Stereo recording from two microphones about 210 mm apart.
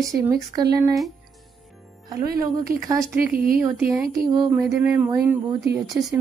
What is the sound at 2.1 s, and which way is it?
Speech, 15° right (ahead or behind).